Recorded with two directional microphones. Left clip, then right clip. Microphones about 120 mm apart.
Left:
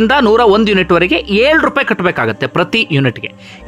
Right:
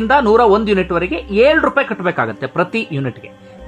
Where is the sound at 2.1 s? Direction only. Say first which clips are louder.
Left 3 dB; 40° left (ahead or behind).